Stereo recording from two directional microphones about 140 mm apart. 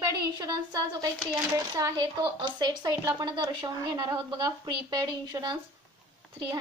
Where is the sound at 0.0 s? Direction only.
30° right (ahead or behind).